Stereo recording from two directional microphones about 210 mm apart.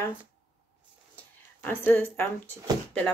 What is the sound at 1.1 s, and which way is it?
Speech, 10° left (ahead or behind).